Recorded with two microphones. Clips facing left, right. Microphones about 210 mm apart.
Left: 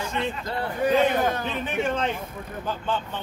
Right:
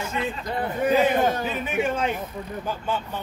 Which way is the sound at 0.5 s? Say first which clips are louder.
Right 1 dB; 20° right (ahead or behind).